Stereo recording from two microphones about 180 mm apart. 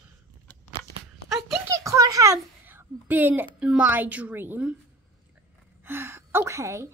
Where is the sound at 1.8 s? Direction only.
20° right (ahead or behind).